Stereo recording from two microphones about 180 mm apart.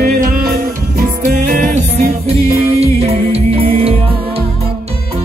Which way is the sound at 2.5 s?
35° right (ahead or behind).